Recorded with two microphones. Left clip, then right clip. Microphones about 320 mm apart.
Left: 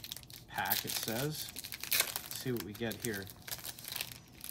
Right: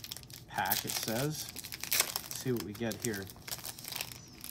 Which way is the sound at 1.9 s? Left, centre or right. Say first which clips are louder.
Right 1 dB; centre.